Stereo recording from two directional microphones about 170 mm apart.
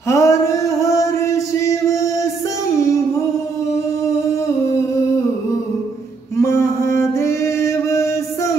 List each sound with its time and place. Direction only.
0.1 s music: 20° left (ahead or behind)
6.3 s mantra: 15° left (ahead or behind)